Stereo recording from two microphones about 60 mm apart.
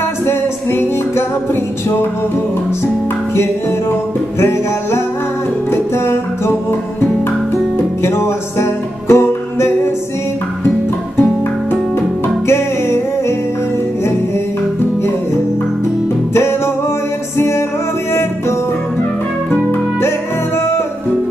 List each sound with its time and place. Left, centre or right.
0.3 s music: left
4.4 s music: left
12.4 s music: left
16.3 s music: left